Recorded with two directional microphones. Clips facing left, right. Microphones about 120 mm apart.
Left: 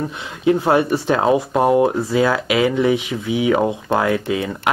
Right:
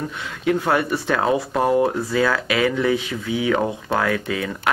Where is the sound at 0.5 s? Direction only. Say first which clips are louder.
Left 4 dB; 25° left (ahead or behind).